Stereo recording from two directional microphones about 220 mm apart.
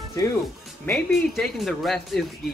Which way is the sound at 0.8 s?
Centre (ahead or behind).